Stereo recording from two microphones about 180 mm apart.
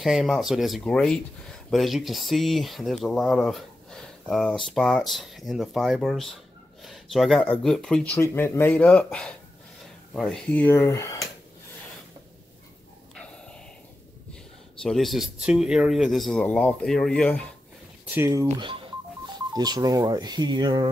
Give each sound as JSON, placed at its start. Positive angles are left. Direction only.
{"t": 0.0, "sound": "speech", "side_deg": 0}
{"t": 14.8, "sound": "speech", "side_deg": 0}
{"t": 18.1, "sound": "speech", "side_deg": -15}